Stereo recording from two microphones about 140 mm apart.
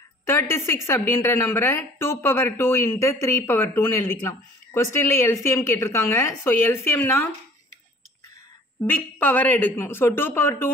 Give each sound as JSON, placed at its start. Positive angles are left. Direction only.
{"t": 0.3, "sound": "a woman's voice", "side_deg": 20}
{"t": 8.8, "sound": "a woman's voice", "side_deg": 15}